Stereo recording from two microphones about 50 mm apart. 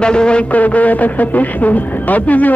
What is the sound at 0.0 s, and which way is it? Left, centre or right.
Speech, centre.